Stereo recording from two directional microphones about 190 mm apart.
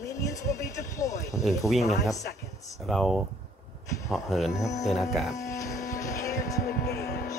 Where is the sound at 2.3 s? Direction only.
55° left (ahead or behind).